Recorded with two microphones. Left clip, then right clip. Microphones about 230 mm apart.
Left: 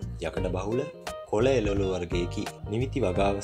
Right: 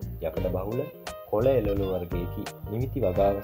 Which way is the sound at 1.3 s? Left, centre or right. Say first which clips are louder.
Right 1 dB; left.